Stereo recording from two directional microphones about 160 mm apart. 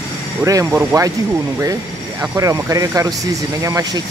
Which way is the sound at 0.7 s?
10° right (ahead or behind).